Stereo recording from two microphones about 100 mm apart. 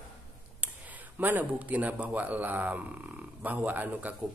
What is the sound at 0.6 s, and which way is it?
Speech, 15° right (ahead or behind).